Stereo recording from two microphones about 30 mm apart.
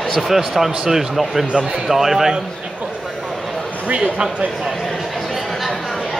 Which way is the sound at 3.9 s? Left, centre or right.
Right.